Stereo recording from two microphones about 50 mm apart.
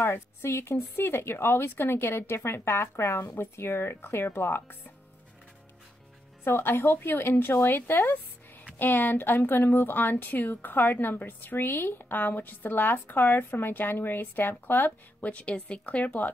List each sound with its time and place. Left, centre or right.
0.1 s speech: left
6.4 s a woman's voice: left
15.1 s speech: left